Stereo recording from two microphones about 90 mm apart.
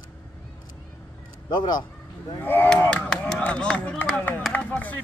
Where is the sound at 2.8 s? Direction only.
10° left (ahead or behind).